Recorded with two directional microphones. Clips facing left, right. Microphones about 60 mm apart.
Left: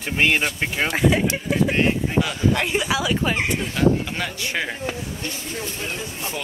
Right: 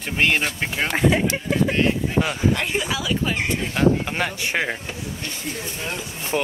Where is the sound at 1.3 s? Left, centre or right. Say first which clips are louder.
Even; centre.